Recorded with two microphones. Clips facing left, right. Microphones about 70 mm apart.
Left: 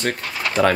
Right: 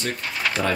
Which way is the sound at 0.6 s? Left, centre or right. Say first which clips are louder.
Left 8 dB; left.